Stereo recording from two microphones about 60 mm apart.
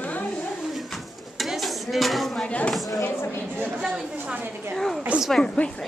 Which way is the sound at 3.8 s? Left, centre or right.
Centre.